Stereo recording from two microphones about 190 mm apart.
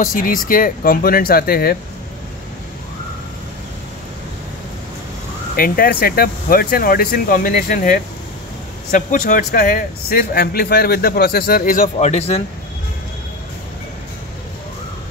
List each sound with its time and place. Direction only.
0.0 s speech: 45° left (ahead or behind)
5.6 s speech: 50° left (ahead or behind); by 12.4 s 30° left (ahead or behind)